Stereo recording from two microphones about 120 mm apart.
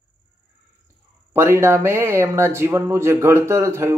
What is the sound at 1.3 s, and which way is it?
Speech, 20° right (ahead or behind).